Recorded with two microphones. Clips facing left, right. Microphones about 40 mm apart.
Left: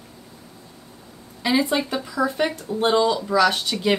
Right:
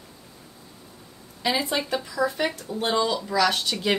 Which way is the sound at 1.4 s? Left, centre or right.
Centre.